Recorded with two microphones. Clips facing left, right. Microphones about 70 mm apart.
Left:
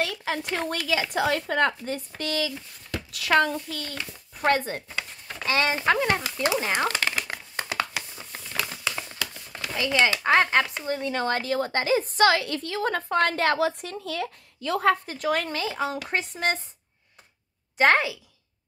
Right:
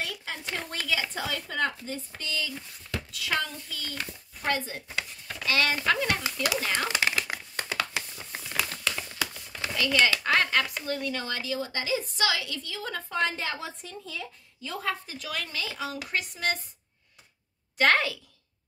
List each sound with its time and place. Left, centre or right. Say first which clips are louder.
0.0 s speech: left 7 dB; left
5.4 s speech: left 2 dB; left
6.9 s speech: even; centre
8.6 s a sound: left 1 dB; centre
9.7 s speech: left 2 dB; left
17.7 s speech: left 3 dB; left